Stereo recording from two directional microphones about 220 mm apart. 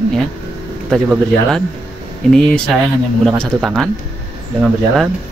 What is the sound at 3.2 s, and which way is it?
Speech, centre (ahead or behind).